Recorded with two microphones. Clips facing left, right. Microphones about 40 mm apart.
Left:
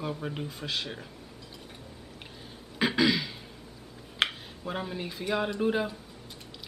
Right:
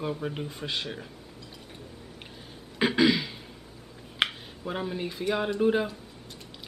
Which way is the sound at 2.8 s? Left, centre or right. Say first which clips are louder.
Right 2 dB; centre.